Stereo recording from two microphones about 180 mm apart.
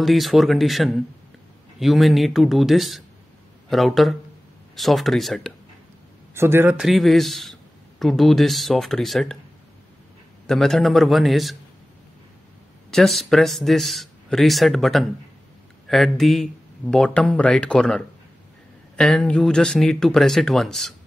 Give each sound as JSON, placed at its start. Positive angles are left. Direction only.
{"t": 0.0, "sound": "a man's voice", "side_deg": 0}
{"t": 6.3, "sound": "a man's voice", "side_deg": -15}
{"t": 10.4, "sound": "a man's voice", "side_deg": 0}
{"t": 12.9, "sound": "a man's voice", "side_deg": 0}